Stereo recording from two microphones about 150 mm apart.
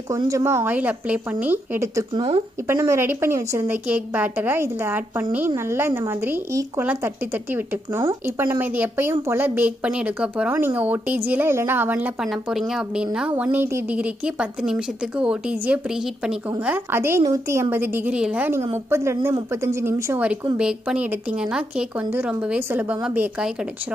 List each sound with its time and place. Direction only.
0.1 s a woman's voice: 20° right (ahead or behind)